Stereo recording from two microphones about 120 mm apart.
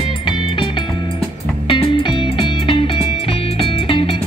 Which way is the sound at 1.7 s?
45° left (ahead or behind).